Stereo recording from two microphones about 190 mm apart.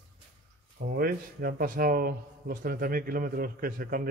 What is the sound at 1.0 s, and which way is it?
A man's voice, 50° right (ahead or behind).